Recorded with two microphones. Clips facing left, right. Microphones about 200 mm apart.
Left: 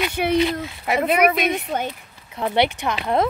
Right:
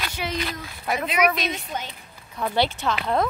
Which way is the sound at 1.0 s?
55° left (ahead or behind).